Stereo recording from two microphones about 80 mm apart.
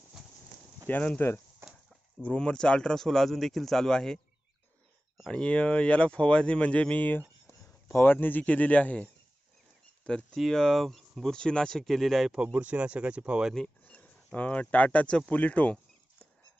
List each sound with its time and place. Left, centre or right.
0.8 s speech: left
1.6 s a sound: centre
2.2 s speech: centre
5.3 s speech: centre
12.3 s speech: centre
13.8 s speech: centre